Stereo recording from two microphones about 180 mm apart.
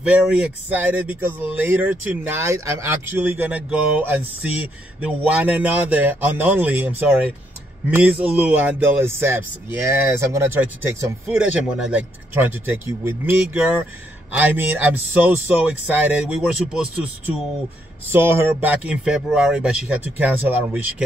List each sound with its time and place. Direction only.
0.0 s speech: 5° right (ahead or behind)
18.1 s speech: 15° right (ahead or behind)